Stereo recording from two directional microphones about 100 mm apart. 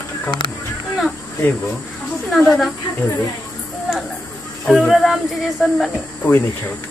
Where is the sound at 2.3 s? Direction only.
Centre (ahead or behind).